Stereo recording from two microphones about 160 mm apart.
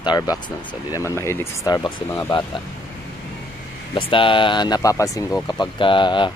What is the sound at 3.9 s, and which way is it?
Speech, 35° left (ahead or behind).